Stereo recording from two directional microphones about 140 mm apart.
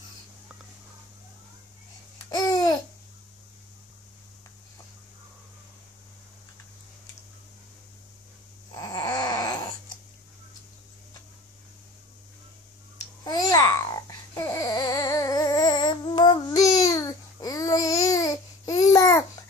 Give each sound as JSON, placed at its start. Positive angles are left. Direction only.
{"t": 2.3, "sound": "babbling", "side_deg": 25}
{"t": 8.7, "sound": "a sound", "side_deg": 25}
{"t": 12.9, "sound": "babbling", "side_deg": 25}